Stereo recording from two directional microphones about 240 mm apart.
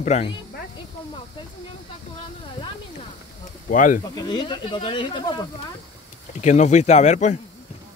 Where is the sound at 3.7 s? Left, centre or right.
Left.